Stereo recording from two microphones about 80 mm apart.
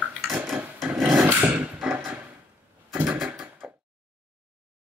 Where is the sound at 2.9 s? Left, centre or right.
Centre.